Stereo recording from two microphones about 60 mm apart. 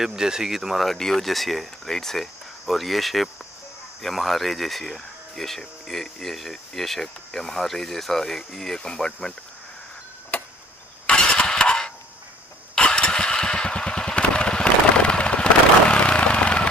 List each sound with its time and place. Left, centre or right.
0.0 s speech: centre
10.3 s tick-tock: left
11.1 s vehicle: centre